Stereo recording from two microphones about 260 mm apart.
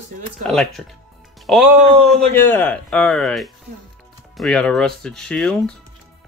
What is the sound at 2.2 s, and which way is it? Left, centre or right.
Speech, centre.